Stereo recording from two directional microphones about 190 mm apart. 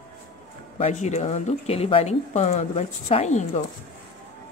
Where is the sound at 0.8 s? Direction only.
35° left (ahead or behind).